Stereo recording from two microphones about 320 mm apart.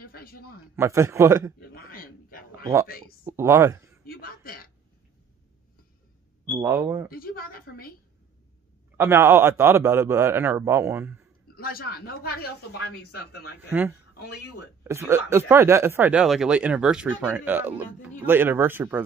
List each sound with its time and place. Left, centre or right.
0.0 s a sound: left
0.7 s speech: centre
1.7 s a sound: left
3.3 s speech: centre
4.0 s a sound: left
6.4 s speech: centre
7.1 s a woman's voice: left
8.9 s speech: centre
11.4 s a man's voice: left
13.7 s speech: centre
14.1 s speech: left
14.8 s speech: centre